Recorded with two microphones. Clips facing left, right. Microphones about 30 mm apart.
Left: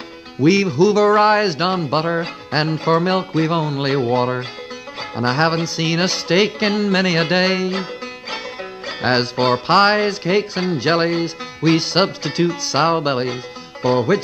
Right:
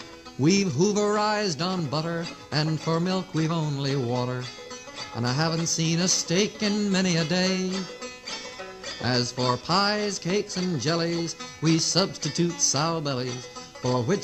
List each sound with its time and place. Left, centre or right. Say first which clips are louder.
0.4 s music: left 8 dB; left